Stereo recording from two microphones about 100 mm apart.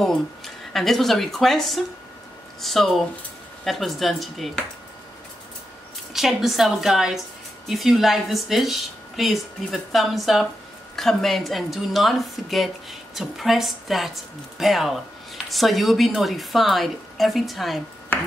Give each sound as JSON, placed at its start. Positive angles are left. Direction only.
{"t": 0.7, "sound": "a woman's voice", "side_deg": 0}
{"t": 6.1, "sound": "a woman's voice", "side_deg": 0}
{"t": 18.1, "sound": "finger snapping", "side_deg": 20}